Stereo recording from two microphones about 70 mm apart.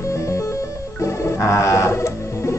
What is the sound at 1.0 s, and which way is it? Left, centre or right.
Music, left.